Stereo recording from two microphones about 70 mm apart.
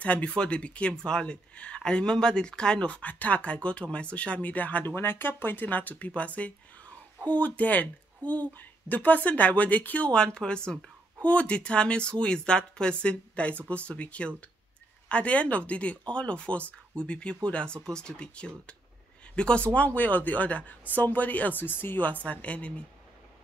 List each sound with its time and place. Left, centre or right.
0.0 s speech: centre
8.2 s speech: right
8.5 s speech: left